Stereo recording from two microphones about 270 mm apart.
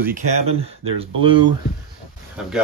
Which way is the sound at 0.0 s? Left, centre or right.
Right.